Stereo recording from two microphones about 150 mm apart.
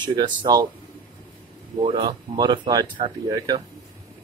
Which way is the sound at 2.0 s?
30° right (ahead or behind).